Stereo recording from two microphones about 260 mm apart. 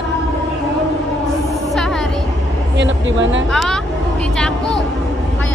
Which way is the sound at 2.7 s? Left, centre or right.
Right.